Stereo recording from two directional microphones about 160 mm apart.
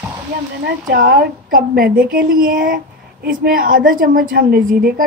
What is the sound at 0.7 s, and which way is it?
A woman's voice, 80° right.